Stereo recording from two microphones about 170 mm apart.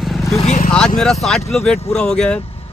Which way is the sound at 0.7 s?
5° left (ahead or behind).